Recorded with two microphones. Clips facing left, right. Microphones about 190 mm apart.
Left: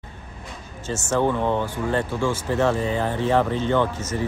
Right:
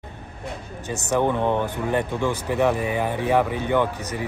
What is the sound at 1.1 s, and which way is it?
Speech, 15° right (ahead or behind).